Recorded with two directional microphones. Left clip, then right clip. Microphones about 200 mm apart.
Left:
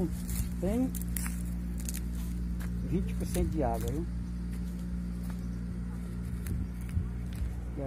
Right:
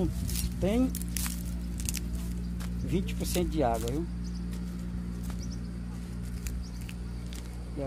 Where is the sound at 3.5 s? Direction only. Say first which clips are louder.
Right 4 dB; 25° right (ahead or behind).